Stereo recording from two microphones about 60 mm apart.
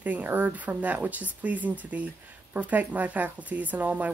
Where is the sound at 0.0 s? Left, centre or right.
Right.